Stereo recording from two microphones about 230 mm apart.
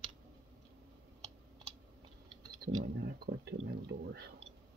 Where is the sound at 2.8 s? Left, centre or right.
Right.